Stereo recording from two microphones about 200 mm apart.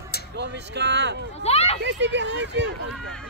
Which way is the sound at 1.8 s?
60° right (ahead or behind).